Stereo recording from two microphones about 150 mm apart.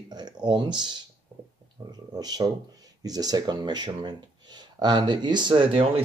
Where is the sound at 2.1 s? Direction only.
25° right (ahead or behind).